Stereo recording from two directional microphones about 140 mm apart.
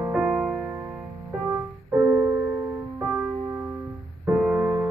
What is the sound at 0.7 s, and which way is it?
Music, 15° right (ahead or behind).